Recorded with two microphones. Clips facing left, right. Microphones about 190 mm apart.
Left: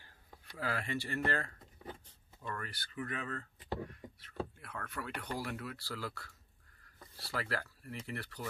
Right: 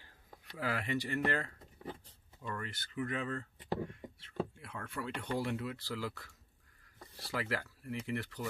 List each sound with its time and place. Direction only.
0.0 s speech: 15° right (ahead or behind)
3.9 s a sound: 25° right (ahead or behind)
4.8 s speech: 25° right (ahead or behind)